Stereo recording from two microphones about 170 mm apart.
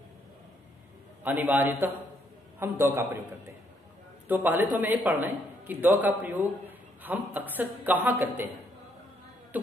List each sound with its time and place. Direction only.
1.2 s speech: 10° right (ahead or behind)
4.3 s speech: 10° right (ahead or behind)